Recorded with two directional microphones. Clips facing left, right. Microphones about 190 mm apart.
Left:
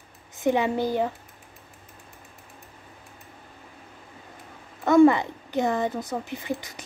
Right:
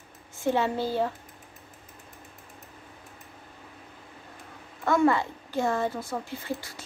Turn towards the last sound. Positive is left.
turn(degrees=20)  # may be behind; listen again after turning